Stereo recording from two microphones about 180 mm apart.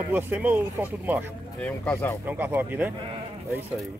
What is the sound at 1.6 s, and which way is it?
Speech, 10° left (ahead or behind).